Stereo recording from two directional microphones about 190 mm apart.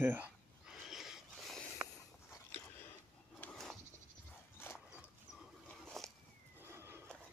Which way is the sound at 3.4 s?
5° left (ahead or behind).